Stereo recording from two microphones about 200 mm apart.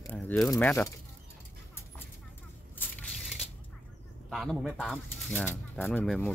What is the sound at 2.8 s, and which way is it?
Crushing, 10° left (ahead or behind).